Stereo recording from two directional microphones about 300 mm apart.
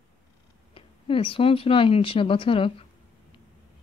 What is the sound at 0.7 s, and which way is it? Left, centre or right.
Speech, centre.